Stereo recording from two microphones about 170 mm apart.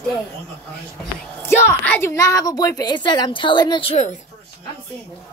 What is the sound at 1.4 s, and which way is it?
A woman's voice, 15° left (ahead or behind).